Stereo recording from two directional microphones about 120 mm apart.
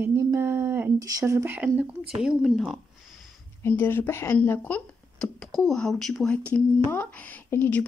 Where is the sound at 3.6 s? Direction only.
20° left (ahead or behind); by 6.3 s centre (ahead or behind).